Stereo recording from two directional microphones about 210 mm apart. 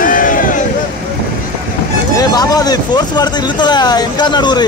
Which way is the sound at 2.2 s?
20° left (ahead or behind).